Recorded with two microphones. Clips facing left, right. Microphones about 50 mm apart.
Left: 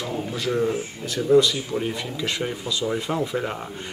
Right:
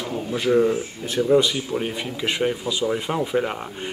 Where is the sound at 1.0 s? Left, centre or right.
Right.